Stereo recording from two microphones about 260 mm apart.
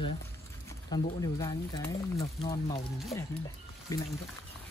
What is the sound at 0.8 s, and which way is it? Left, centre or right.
Speech, centre.